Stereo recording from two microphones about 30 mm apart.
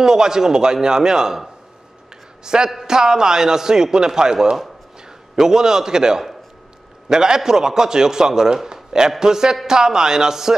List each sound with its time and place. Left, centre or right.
0.0 s a man's voice: right
2.4 s a man's voice: right